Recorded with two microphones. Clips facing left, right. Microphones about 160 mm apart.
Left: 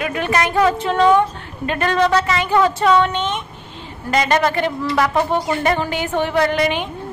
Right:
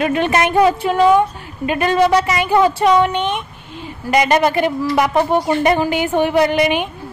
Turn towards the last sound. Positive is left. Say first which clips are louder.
# right 3 dB
turn(degrees=-15)  # may be behind; listen again after turning